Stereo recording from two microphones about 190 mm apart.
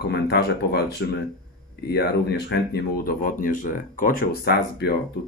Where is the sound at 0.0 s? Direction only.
60° left (ahead or behind).